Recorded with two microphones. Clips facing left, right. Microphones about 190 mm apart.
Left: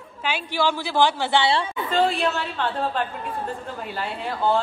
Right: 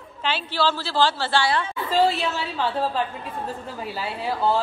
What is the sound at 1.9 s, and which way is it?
A woman's voice, 5° right (ahead or behind).